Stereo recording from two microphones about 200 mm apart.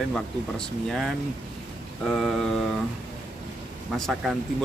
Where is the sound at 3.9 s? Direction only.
Centre (ahead or behind).